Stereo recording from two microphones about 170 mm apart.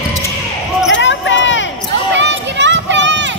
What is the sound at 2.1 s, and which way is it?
Run, 90° right.